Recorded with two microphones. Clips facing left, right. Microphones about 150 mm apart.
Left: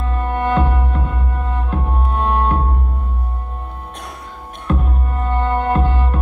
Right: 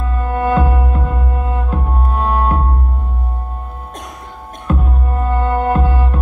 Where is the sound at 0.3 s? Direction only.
40° right (ahead or behind).